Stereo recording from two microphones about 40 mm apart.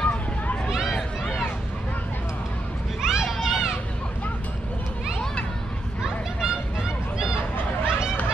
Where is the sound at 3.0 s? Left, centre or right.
Centre.